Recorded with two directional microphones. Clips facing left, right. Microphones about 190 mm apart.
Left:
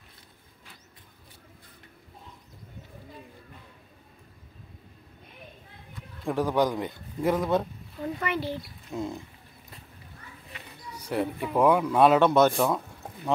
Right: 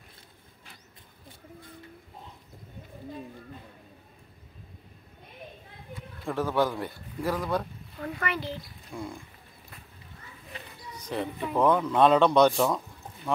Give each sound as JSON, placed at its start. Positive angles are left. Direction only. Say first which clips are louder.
{"t": 6.2, "sound": "a man's voice", "louder": "left 2 dB", "side_deg": 15}
{"t": 10.9, "sound": "speech", "louder": "left 4 dB", "side_deg": 10}